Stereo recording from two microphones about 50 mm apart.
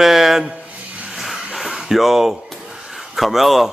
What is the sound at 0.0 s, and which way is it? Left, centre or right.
Speech, centre.